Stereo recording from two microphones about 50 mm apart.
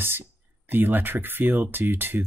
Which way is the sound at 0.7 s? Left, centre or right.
Right.